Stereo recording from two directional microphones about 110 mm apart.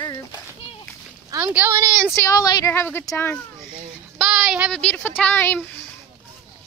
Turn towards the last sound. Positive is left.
turn(degrees=15)  # may be behind; listen again after turning